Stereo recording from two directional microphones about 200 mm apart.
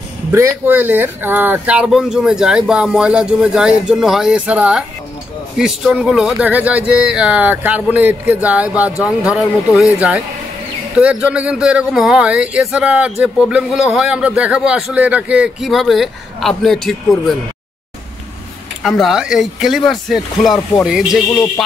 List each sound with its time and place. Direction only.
0.3 s speech: 10° right (ahead or behind)
18.8 s speech: centre (ahead or behind)